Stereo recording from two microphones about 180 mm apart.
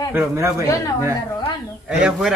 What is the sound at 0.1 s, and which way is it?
Speech, 15° right (ahead or behind).